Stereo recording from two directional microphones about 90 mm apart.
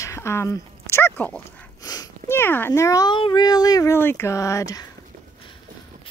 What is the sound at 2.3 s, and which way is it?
Speech, 25° left (ahead or behind).